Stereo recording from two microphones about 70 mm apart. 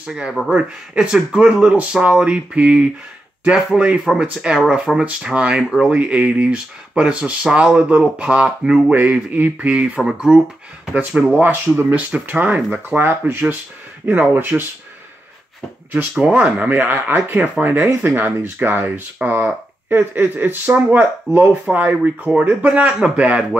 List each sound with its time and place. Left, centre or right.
0.0 s speech: centre
4.0 s speech: centre
8.9 s speech: right
11.3 s speech: right
15.9 s speech: right